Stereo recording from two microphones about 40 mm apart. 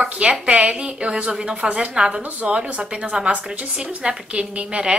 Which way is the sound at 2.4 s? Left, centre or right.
Right.